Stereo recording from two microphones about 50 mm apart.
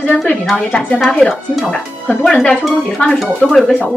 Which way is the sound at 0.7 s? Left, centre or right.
Left.